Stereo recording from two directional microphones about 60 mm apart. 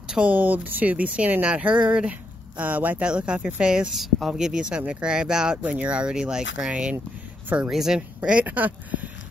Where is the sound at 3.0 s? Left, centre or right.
Centre.